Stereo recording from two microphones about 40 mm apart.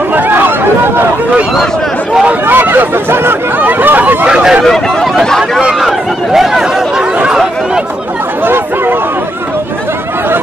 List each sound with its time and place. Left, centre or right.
0.1 s hubbub: right
2.4 s hubbub: right
3.6 s a sound: right
4.3 s hubbub: centre
5.2 s speech: centre
5.8 s speech: centre